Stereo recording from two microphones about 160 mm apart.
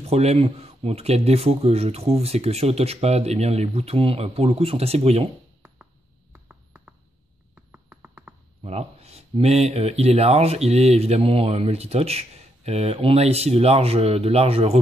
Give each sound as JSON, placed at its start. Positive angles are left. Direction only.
{"t": 0.1, "sound": "speech", "side_deg": -40}
{"t": 6.3, "sound": "a sound", "side_deg": -10}
{"t": 8.6, "sound": "speech", "side_deg": -40}